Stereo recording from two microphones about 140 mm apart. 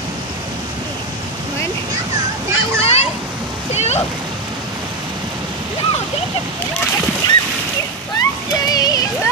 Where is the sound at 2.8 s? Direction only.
50° left (ahead or behind).